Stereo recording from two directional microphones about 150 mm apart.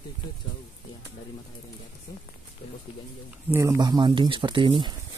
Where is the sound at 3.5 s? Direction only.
20° right (ahead or behind).